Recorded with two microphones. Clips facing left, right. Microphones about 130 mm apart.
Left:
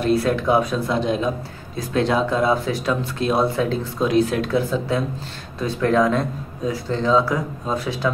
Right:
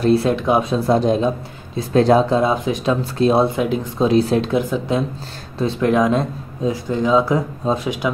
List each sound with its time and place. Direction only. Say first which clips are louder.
0.0 s speech: right 3 dB; 30° right (ahead or behind)
2.3 s speech: right 2 dB; 20° right (ahead or behind)
3.0 s speech: right 5 dB; 35° right (ahead or behind)
3.4 s speech: right 2 dB; 15° right (ahead or behind)
4.0 s speech: right 3 dB; 30° right (ahead or behind)
4.5 s speech: right 2 dB; 15° right (ahead or behind)